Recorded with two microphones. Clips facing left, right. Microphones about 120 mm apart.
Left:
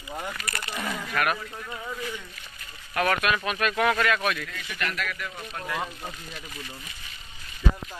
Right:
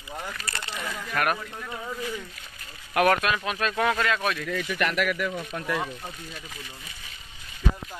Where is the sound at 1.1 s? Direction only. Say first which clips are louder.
Right 1 dB; 40° right (ahead or behind).